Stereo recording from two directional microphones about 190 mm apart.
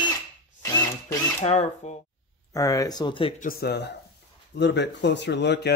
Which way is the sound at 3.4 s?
50° left (ahead or behind).